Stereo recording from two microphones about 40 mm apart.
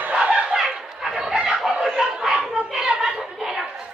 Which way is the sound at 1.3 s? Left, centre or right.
Centre.